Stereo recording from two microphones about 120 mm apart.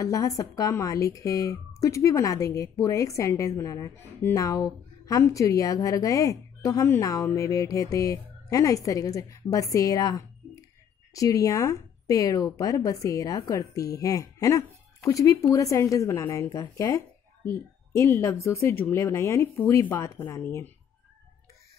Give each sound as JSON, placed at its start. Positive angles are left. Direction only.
{"t": 0.0, "sound": "a woman's voice", "side_deg": 30}